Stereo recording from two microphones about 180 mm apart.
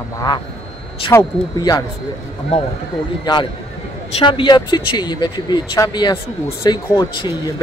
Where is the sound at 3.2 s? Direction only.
25° left (ahead or behind).